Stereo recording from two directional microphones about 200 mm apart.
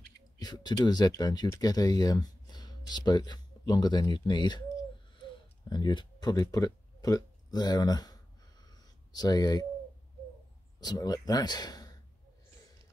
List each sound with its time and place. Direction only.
0.4 s speech: 20° left (ahead or behind)
5.7 s speech: 20° left (ahead or behind)
10.8 s speech: 20° left (ahead or behind)